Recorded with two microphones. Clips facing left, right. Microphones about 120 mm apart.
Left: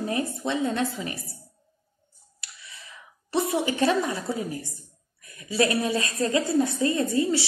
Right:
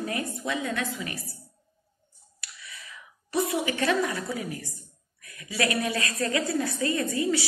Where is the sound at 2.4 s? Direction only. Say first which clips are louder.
Right 1 dB; 25° left (ahead or behind).